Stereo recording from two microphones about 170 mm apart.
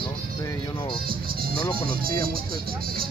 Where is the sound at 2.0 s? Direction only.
60° right (ahead or behind).